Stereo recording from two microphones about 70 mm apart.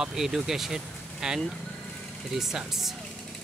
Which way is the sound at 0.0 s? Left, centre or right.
Centre.